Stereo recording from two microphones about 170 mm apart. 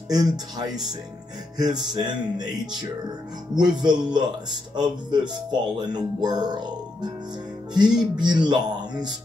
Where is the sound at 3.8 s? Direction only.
25° right (ahead or behind).